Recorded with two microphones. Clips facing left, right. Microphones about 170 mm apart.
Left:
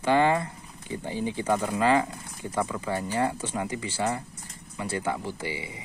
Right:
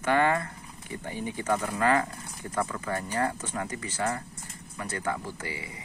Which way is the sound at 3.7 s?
25° left (ahead or behind).